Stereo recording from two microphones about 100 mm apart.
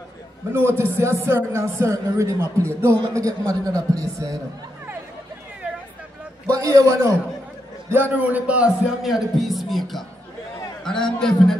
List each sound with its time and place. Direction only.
0.5 s a man's voice: 25° right (ahead or behind)
6.5 s a man's voice: 35° right (ahead or behind)
7.9 s a man's voice: 20° right (ahead or behind)
9.0 s speech: centre (ahead or behind)